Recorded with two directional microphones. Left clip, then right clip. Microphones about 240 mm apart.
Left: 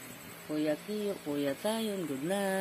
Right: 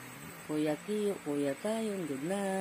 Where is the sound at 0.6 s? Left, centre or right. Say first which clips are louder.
Even; centre.